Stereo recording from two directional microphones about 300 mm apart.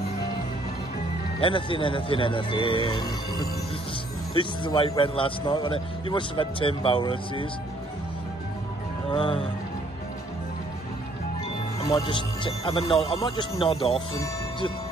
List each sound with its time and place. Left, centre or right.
1.4 s a man's voice: centre
9.1 s a man's voice: centre
11.8 s a man's voice: centre